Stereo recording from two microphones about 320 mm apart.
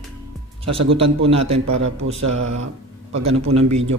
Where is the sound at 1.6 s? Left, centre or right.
Right.